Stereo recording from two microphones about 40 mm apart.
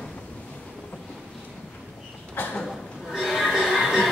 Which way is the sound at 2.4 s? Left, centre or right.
Left.